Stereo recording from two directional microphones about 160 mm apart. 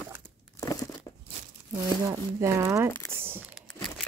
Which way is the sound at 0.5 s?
20° left (ahead or behind).